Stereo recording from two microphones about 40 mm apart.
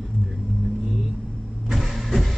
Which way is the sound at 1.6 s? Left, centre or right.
Centre.